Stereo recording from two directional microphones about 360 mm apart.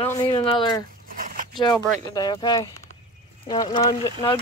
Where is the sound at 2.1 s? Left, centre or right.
Centre.